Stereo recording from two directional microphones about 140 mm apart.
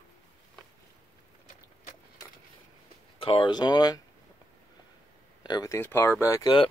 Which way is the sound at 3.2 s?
35° left (ahead or behind).